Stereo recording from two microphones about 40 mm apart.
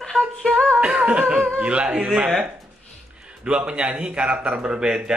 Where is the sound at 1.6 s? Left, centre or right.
Right.